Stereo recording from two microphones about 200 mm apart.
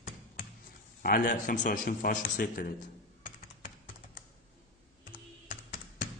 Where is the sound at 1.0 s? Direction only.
45° left (ahead or behind).